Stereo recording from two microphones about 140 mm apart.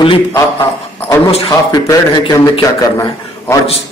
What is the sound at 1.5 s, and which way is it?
A man's voice, 25° left (ahead or behind).